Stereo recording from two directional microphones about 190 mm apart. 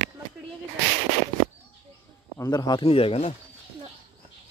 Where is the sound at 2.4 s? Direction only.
20° left (ahead or behind).